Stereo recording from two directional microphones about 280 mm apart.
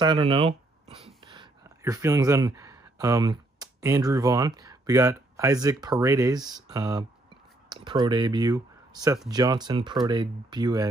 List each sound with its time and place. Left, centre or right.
0.0 s speech: centre